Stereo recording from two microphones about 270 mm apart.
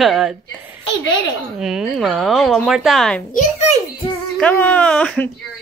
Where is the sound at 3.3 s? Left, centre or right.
Left.